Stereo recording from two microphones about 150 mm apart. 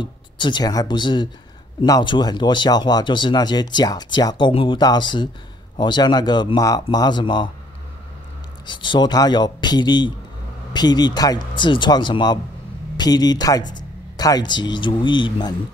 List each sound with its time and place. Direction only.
0.0 s speech: 30° left (ahead or behind)
8.6 s speech: 30° left (ahead or behind)